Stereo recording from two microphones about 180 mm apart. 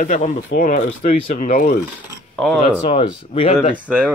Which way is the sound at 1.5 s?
50° left (ahead or behind).